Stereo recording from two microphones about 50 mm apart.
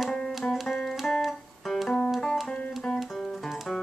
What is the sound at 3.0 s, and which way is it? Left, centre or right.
Music, centre.